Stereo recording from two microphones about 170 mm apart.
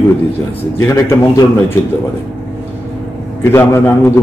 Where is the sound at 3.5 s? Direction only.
15° left (ahead or behind).